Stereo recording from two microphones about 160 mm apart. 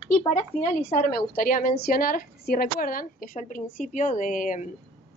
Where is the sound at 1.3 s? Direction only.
60° left (ahead or behind).